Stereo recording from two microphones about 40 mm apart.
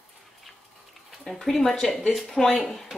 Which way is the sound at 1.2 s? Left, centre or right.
Centre.